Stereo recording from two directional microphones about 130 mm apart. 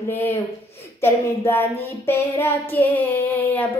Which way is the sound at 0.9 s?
20° left (ahead or behind).